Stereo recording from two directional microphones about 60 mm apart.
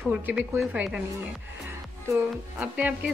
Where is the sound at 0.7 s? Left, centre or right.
Centre.